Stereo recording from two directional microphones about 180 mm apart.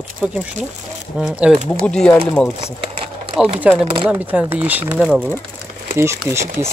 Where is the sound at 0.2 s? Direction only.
5° right (ahead or behind).